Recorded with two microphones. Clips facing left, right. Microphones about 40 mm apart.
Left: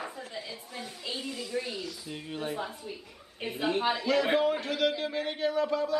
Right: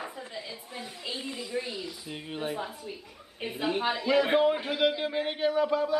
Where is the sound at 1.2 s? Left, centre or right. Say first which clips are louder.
Even; right.